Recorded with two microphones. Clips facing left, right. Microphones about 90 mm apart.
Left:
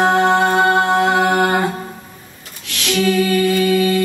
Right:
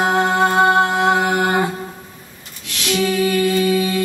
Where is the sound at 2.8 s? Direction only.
15° right (ahead or behind).